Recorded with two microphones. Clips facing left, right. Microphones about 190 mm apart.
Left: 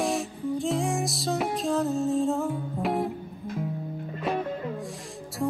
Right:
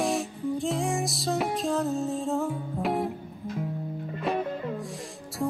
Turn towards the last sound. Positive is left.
turn(degrees=0)  # may be behind; listen again after turning